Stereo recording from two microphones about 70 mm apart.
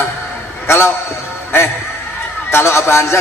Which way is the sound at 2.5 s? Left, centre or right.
Left.